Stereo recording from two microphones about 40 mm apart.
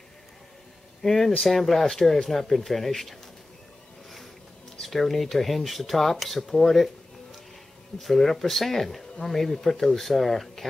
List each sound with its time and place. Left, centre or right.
1.0 s speech: centre
4.7 s speech: centre
8.0 s speech: centre